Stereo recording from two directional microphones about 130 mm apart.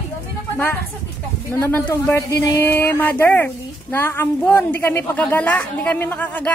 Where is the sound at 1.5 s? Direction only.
15° left (ahead or behind).